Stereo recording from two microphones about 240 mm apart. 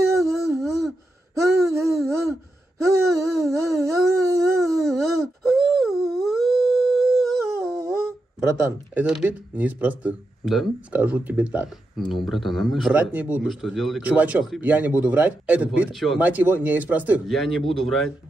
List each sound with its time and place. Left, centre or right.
0.1 s a sound: centre
2.8 s wail: centre
5.5 s a sound: centre
6.2 s dog: centre
7.5 s humming: centre
8.9 s speech: centre